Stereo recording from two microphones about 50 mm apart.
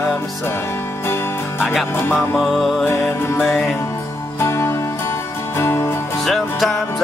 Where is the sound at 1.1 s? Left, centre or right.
Left.